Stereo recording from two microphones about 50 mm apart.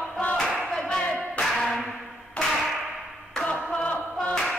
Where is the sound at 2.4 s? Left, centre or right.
Left.